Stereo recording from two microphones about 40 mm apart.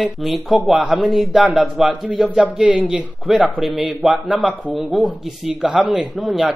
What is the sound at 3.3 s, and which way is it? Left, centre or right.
Speech, centre.